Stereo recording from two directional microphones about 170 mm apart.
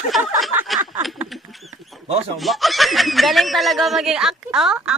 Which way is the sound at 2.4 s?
Centre (ahead or behind).